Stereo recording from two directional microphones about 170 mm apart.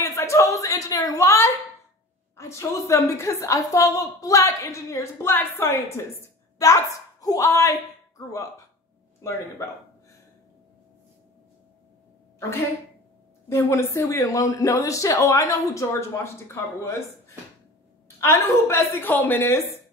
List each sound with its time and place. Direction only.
0.0 s a sound: 15° left (ahead or behind)
2.3 s a man's voice: 15° left (ahead or behind)
13.5 s a man's voice: 15° left (ahead or behind)
18.0 s a man's voice: 15° left (ahead or behind)